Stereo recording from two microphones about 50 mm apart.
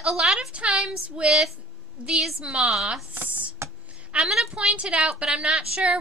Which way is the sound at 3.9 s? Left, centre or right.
Right.